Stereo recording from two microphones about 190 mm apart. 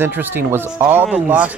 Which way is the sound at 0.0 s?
10° right (ahead or behind).